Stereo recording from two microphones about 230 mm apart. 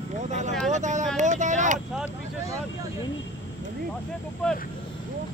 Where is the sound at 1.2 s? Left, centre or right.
Right.